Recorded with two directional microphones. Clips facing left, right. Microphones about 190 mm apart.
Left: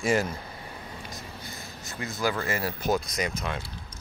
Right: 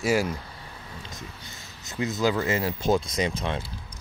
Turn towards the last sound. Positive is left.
turn(degrees=-30)  # may be behind; listen again after turning